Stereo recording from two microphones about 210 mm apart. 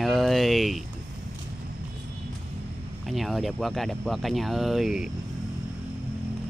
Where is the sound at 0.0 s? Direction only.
Centre (ahead or behind).